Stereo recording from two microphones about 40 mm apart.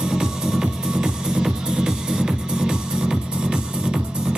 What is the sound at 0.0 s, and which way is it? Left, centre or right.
Music, centre.